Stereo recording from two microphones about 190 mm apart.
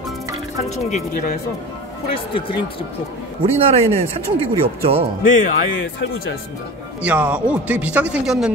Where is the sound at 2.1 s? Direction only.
30° left (ahead or behind).